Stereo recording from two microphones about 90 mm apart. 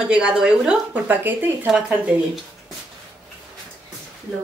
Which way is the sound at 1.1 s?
20° right (ahead or behind).